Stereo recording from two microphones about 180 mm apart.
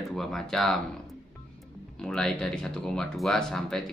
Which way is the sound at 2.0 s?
5° left (ahead or behind).